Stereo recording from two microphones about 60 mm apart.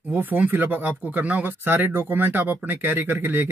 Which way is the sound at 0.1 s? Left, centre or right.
Right.